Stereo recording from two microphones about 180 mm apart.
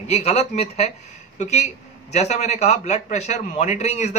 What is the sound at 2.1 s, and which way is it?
A man's voice, 40° left (ahead or behind).